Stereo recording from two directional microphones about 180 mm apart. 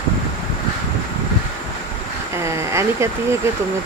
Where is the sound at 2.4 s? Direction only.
15° right (ahead or behind).